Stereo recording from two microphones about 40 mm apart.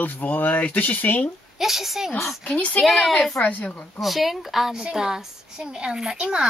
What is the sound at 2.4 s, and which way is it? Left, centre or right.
Speech, left.